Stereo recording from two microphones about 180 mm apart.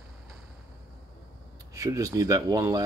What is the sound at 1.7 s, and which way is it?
Speech, 20° right (ahead or behind).